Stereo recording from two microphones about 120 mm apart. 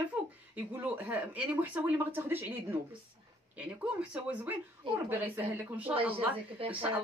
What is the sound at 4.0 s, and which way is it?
Speech, 10° right (ahead or behind).